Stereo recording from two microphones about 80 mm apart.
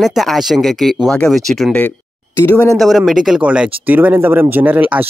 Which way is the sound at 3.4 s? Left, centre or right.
Centre.